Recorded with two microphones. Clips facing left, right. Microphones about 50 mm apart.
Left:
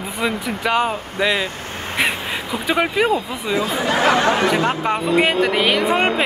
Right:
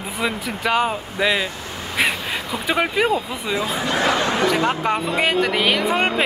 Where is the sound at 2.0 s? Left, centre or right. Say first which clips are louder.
Even; centre.